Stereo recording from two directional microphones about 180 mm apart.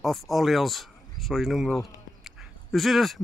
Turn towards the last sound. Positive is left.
turn(degrees=0)  # may be behind; listen again after turning